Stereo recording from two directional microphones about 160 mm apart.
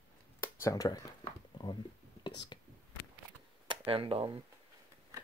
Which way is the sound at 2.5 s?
30° left (ahead or behind).